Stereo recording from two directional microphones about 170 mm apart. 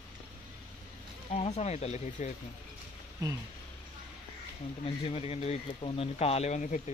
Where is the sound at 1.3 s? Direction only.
40° left (ahead or behind).